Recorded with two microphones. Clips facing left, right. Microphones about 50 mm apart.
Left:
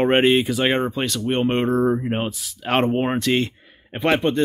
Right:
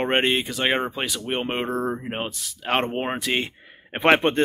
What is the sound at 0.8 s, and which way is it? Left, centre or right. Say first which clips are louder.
Speech: left 5 dB; centre.